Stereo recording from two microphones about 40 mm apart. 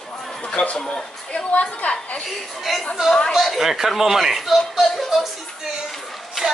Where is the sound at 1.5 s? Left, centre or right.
Left.